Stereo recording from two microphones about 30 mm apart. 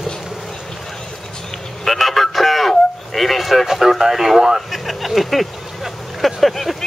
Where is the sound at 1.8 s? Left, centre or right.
Centre.